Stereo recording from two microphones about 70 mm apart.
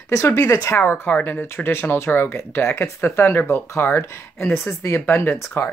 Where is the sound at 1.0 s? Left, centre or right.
Left.